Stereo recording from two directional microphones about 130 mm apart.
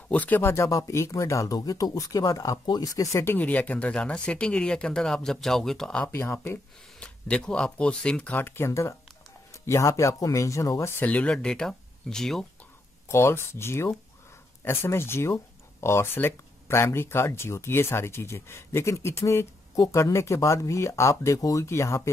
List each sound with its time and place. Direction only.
0.1 s speech: 10° left (ahead or behind)
6.1 s speech: 15° left (ahead or behind)
13.1 s speech: 20° left (ahead or behind)